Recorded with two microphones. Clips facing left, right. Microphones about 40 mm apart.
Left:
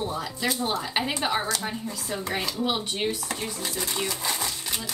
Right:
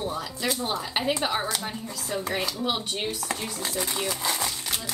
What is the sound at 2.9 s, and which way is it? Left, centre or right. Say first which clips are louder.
Speech: left 1 dB; centre.